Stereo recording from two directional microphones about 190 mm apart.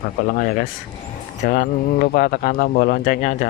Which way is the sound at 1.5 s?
45° left (ahead or behind).